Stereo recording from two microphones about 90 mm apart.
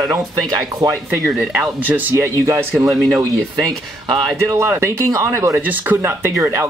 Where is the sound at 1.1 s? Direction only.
20° right (ahead or behind).